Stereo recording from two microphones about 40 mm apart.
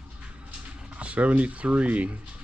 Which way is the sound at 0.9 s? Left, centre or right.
Right.